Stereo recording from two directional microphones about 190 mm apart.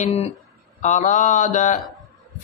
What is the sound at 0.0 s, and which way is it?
Mantra, 35° left (ahead or behind).